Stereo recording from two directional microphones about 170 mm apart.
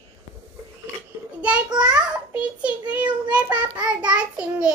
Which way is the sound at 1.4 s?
5° right (ahead or behind).